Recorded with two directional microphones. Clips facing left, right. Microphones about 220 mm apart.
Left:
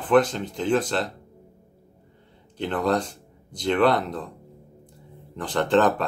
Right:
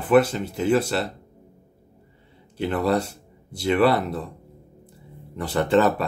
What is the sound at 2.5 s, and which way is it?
Speech, 5° right (ahead or behind).